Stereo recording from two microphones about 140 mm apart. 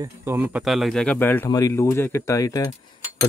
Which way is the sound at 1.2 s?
15° left (ahead or behind).